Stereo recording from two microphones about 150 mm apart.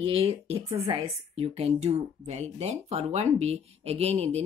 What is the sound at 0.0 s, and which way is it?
A woman's voice, 40° right (ahead or behind).